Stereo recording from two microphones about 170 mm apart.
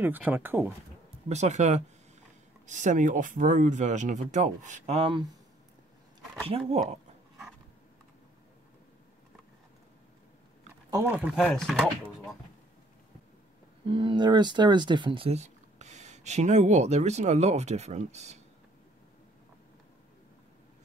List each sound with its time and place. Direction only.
0.0 s speech: 10° right (ahead or behind)
1.3 s speech: 45° right (ahead or behind)
6.4 s speech: 35° right (ahead or behind)
10.9 s speech: 15° right (ahead or behind); by 11.9 s centre (ahead or behind)
13.8 s speech: 30° right (ahead or behind)